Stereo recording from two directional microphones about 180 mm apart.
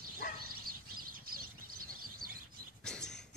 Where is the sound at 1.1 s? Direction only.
55° right (ahead or behind).